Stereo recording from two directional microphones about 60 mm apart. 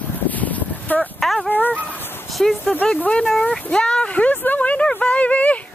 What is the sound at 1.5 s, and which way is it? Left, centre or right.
Speech, left.